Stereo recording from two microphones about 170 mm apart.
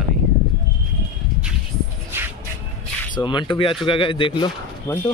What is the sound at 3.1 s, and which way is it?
A man's voice, 25° left (ahead or behind).